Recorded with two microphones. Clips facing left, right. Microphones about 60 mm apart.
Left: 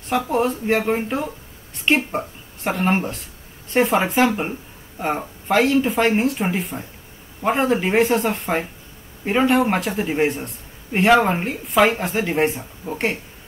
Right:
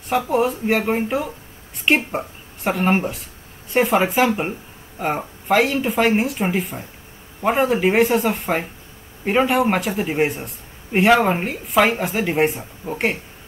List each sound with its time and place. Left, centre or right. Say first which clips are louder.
0.1 s speech: right 1 dB; centre